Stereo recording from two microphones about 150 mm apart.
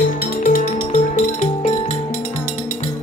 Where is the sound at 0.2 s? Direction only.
65° left (ahead or behind).